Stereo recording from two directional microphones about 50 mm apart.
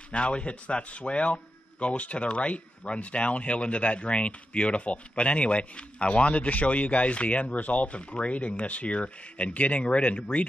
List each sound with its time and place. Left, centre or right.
0.1 s speech: left